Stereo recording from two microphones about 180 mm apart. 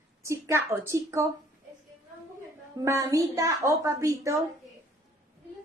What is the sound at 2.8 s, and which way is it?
Speech, 15° right (ahead or behind).